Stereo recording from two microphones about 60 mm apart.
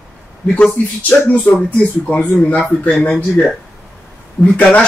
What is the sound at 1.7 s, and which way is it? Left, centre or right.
Speech, left.